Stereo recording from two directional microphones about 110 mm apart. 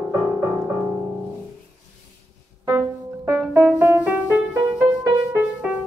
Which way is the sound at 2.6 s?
20° right (ahead or behind).